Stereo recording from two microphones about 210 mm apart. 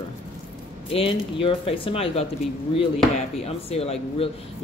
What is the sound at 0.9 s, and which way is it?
Speech, 25° left (ahead or behind).